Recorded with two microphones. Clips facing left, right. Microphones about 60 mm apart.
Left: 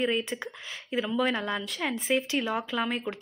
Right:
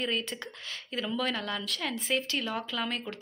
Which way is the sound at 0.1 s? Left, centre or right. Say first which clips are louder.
Left 4 dB; centre.